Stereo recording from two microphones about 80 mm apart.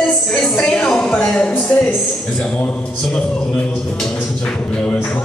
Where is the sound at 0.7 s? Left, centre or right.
Centre.